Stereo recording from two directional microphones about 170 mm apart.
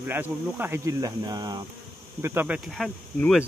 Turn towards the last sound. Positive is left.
turn(degrees=0)  # may be behind; listen again after turning